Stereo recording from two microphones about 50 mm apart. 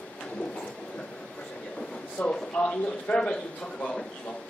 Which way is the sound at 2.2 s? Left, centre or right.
Left.